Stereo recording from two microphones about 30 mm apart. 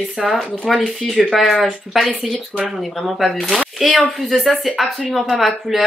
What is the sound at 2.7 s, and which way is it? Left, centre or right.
Speech, centre.